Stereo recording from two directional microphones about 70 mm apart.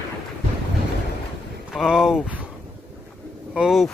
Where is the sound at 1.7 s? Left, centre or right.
Centre.